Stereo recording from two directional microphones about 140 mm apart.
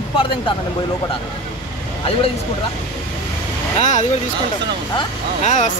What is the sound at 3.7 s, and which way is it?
Speech, 60° left (ahead or behind).